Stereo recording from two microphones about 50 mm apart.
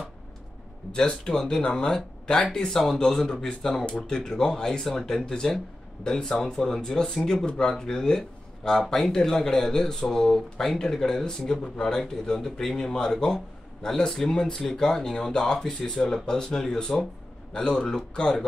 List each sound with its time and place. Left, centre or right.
0.9 s speech: centre
7.4 s speech: centre